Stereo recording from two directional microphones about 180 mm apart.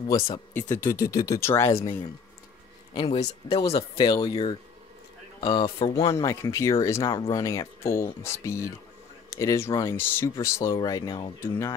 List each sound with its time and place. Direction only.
0.5 s speech: 10° left (ahead or behind)
2.9 s speech: 30° left (ahead or behind)
6.1 s speech: 15° left (ahead or behind)